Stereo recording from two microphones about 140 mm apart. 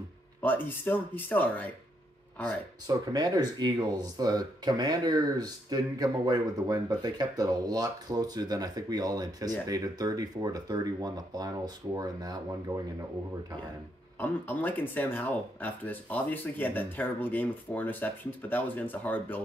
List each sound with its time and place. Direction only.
0.4 s speech: 15° left (ahead or behind)
2.9 s speech: 25° right (ahead or behind)
14.2 s speech: 15° left (ahead or behind)